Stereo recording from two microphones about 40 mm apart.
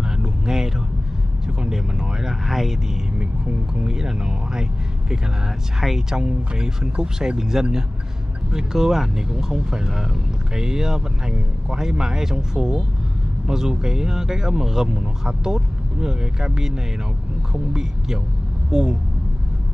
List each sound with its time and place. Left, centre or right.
0.2 s music: centre
1.6 s vehicle: centre
3.2 s music: right
5.8 s speech: centre
17.7 s speech: centre